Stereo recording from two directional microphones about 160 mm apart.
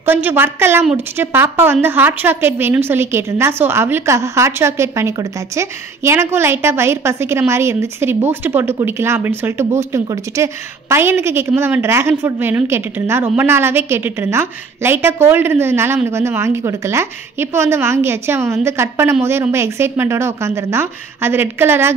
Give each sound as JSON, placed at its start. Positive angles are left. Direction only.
{"t": 0.0, "sound": "speech", "side_deg": -15}